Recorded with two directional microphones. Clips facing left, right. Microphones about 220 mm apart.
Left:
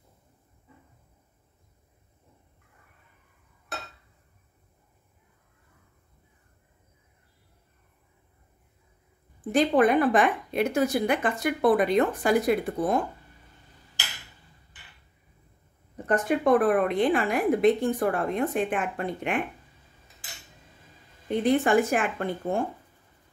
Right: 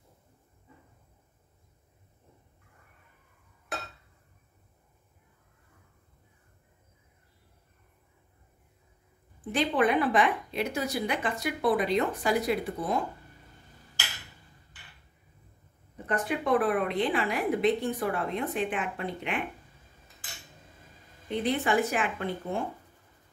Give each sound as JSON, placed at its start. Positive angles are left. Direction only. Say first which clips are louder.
{"t": 9.5, "sound": "a woman's voice", "louder": "left 5 dB", "side_deg": 45}
{"t": 16.1, "sound": "a woman's voice", "louder": "left 5 dB", "side_deg": 45}
{"t": 21.3, "sound": "a woman's voice", "louder": "left 5 dB", "side_deg": 50}